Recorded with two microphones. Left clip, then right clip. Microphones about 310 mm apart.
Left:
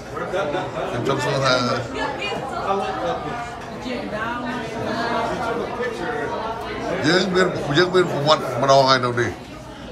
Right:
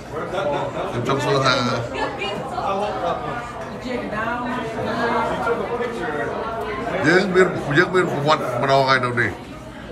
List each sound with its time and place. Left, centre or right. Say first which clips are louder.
1.0 s a man's voice: right 2 dB; centre
7.0 s a man's voice: right 3 dB; centre